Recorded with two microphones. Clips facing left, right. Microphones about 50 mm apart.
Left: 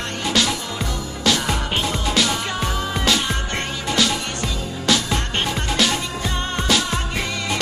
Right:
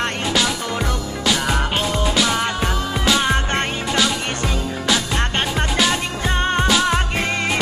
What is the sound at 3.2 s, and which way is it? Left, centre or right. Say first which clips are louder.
Music: right 5 dB; right.